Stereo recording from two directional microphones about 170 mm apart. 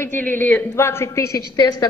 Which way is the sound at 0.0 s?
10° left (ahead or behind).